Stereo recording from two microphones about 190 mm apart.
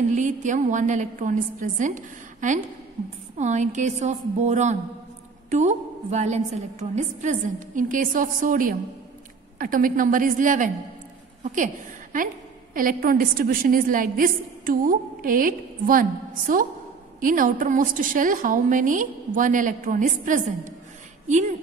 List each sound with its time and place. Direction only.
0.1 s a woman's voice: 40° right (ahead or behind)